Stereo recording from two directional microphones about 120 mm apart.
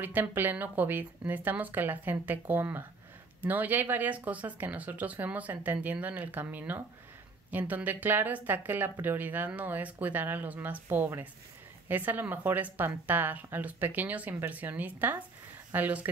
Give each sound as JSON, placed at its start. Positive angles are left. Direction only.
{"t": 0.0, "sound": "speech", "side_deg": -15}